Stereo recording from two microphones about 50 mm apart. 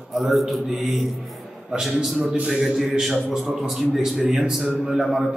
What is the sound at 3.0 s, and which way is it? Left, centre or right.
A man's voice, centre.